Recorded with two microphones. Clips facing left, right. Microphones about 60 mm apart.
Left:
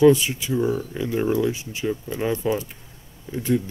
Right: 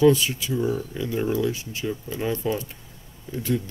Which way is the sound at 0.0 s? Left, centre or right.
Left.